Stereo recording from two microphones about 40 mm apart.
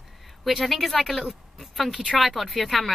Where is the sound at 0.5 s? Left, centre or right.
Centre.